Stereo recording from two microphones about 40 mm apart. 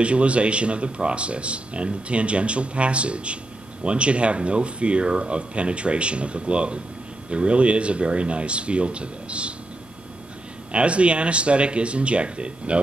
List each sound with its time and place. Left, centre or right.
0.0 s speech: right
10.7 s speech: right